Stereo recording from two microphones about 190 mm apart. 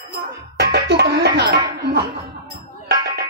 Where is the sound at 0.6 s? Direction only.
60° right (ahead or behind).